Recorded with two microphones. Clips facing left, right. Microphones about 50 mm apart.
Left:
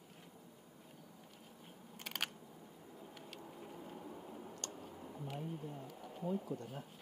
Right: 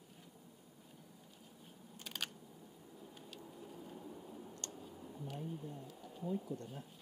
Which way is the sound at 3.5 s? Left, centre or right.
Left.